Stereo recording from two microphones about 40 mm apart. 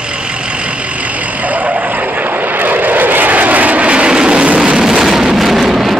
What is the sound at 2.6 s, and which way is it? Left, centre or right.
Vehicle, right.